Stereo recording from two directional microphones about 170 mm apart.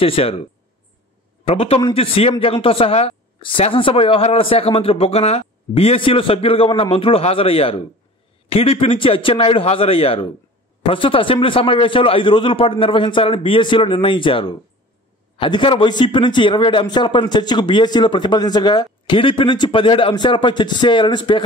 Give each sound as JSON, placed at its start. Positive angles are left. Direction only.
{"t": 0.0, "sound": "a man's voice", "side_deg": 35}